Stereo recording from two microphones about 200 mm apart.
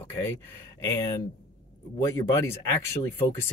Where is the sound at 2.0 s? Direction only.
15° left (ahead or behind).